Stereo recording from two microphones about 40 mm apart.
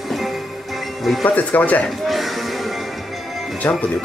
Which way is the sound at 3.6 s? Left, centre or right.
Left.